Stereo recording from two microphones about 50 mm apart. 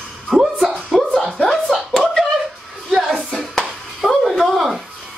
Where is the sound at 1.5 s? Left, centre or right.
Centre.